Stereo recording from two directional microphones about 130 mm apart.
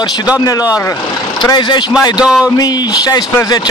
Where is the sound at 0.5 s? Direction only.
30° left (ahead or behind).